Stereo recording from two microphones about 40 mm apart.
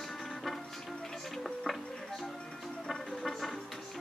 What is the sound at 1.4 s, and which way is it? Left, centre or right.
Music, centre.